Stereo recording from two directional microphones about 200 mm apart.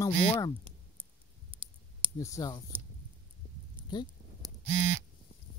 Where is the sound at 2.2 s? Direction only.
15° left (ahead or behind).